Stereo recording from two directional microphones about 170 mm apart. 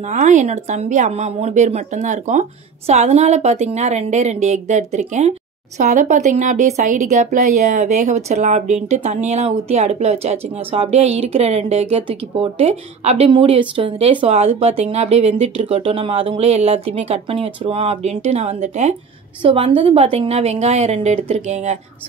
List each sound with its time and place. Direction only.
0.1 s a woman's voice: 45° right (ahead or behind)